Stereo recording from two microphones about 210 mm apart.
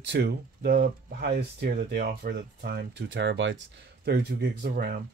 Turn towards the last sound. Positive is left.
turn(degrees=-50)  # may be behind; listen again after turning